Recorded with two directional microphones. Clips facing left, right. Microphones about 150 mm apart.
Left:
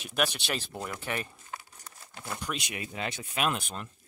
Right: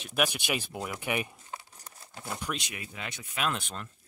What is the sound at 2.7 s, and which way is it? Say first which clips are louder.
Speech: left 5 dB; 30° left (ahead or behind).